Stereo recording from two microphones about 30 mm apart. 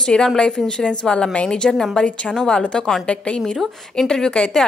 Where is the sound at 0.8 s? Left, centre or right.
Left.